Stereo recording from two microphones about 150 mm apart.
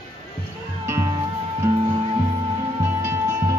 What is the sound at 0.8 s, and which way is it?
Music, 20° right (ahead or behind).